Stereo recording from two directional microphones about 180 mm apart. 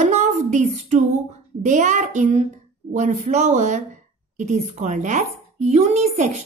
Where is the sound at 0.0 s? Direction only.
40° right (ahead or behind).